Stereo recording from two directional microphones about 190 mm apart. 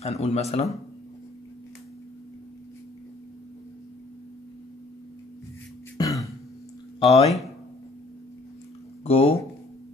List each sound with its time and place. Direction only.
0.0 s speech: 35° left (ahead or behind)
5.9 s a sound: 15° left (ahead or behind)
7.0 s speech: 30° left (ahead or behind)
9.0 s speech: 30° left (ahead or behind)